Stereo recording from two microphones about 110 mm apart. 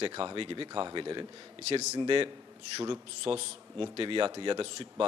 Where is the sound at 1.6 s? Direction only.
85° right.